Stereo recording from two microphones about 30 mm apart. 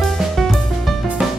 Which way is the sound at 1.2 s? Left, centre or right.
Right.